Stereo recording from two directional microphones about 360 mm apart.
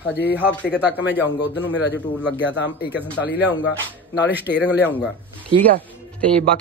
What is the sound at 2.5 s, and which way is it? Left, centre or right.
Speech, left.